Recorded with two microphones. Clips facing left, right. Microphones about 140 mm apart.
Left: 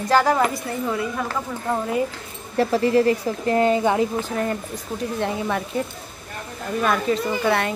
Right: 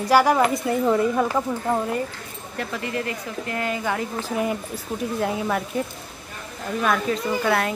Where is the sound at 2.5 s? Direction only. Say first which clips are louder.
Left 11 dB; 35° left (ahead or behind).